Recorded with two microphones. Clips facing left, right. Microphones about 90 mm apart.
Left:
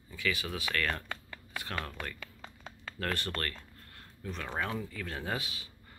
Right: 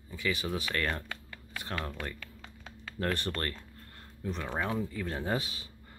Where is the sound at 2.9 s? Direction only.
25° right (ahead or behind).